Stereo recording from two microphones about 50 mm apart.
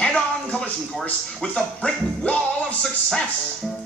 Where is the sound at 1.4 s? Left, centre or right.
Left.